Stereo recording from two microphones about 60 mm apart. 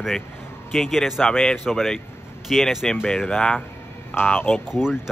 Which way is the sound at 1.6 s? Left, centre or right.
Centre.